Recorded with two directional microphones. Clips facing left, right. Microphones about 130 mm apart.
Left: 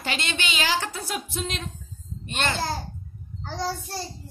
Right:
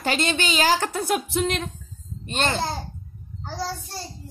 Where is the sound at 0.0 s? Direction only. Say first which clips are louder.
Right 6 dB; 40° right (ahead or behind); by 1.6 s 60° right (ahead or behind).